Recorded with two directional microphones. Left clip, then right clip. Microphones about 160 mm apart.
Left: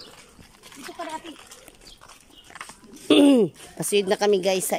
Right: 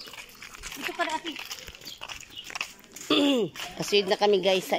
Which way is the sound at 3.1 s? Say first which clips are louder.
Left 7 dB; 25° left (ahead or behind).